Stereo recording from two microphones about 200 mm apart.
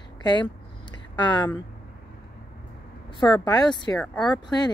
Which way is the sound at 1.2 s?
20° left (ahead or behind).